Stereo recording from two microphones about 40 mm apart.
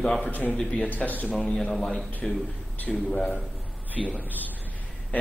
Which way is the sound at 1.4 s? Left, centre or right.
Centre.